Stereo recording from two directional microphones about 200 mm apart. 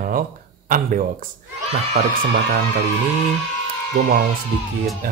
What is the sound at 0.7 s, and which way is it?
Speech, 45° right (ahead or behind).